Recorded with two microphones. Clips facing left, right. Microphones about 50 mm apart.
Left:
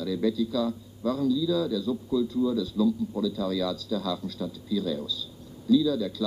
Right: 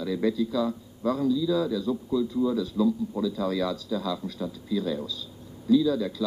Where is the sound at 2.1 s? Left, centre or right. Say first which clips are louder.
Left 1 dB; right.